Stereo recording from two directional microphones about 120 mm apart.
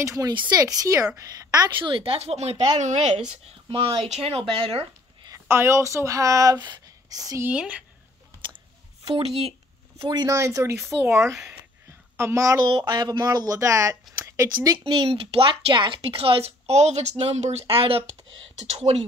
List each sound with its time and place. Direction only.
0.0 s speech: 25° right (ahead or behind)
1.8 s a woman's voice: 45° right (ahead or behind)
2.8 s speech: 75° right (ahead or behind)
3.6 s a woman's voice: 50° right (ahead or behind)
5.5 s speech: 20° right (ahead or behind)
7.4 s speech: 10° right (ahead or behind)
9.0 s a woman's voice: 50° right (ahead or behind)
10.0 s speech: 30° right (ahead or behind)
12.6 s speech: 40° right (ahead or behind)
14.1 s a sound: 25° right (ahead or behind)
15.0 s a woman's voice: 50° right (ahead or behind)